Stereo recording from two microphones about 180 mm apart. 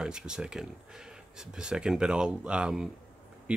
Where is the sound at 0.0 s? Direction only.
5° right (ahead or behind).